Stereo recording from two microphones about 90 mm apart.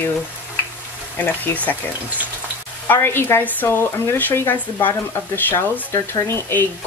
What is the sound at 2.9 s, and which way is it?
Speech, 25° left (ahead or behind).